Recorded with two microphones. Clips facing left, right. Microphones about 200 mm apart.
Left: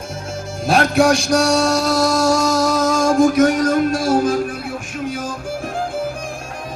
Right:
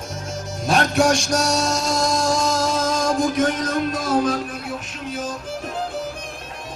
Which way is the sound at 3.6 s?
50° left (ahead or behind).